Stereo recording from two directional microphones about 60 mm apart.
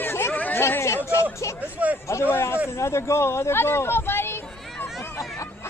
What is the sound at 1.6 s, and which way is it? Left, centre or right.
Speech, right.